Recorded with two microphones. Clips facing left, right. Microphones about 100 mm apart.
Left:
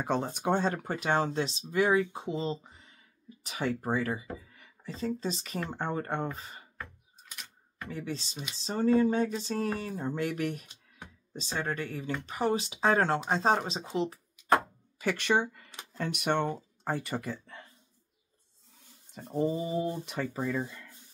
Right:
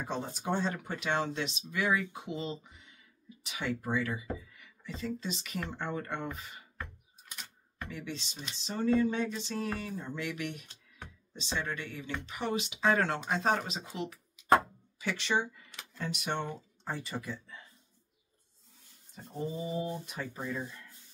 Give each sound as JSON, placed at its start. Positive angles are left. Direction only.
{"t": 0.0, "sound": "speech", "side_deg": 60}
{"t": 7.9, "sound": "speech", "side_deg": 35}
{"t": 15.0, "sound": "speech", "side_deg": 50}
{"t": 19.1, "sound": "speech", "side_deg": 90}